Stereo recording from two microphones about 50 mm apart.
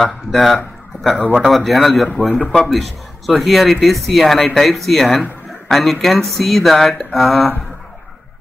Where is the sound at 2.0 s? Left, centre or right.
Left.